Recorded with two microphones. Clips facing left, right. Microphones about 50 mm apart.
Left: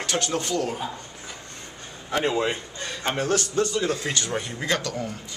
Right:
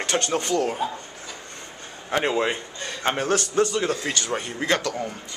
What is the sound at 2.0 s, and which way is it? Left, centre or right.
A man's voice, right.